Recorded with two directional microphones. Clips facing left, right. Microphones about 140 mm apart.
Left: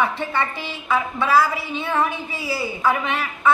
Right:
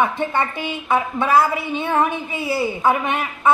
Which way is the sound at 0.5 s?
50° right (ahead or behind).